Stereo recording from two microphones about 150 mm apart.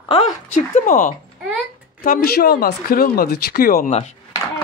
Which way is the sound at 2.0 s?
75° left (ahead or behind).